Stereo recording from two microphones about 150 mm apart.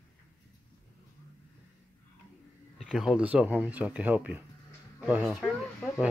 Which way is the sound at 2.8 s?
5° right (ahead or behind).